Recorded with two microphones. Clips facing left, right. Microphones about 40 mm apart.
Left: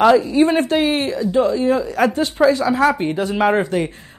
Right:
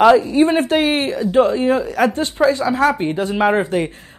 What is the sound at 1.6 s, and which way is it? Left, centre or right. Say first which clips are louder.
Speech: right 1 dB; right.